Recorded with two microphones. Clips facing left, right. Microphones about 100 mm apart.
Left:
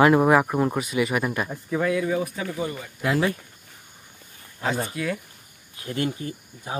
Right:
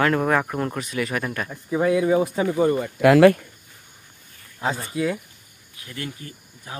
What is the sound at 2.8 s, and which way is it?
Speech, 70° right (ahead or behind).